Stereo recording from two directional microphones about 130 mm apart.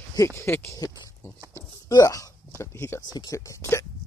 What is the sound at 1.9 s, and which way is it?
Speech, 30° left (ahead or behind).